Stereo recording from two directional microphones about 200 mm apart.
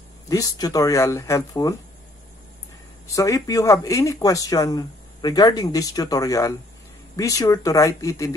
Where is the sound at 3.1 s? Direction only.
15° left (ahead or behind).